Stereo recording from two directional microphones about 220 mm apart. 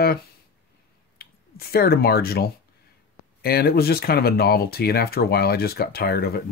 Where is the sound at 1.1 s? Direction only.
45° left (ahead or behind).